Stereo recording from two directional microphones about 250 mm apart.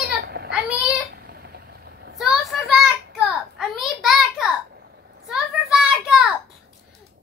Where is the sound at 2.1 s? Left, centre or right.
Centre.